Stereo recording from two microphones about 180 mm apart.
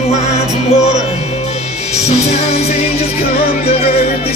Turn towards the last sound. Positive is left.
turn(degrees=35)  # may be behind; listen again after turning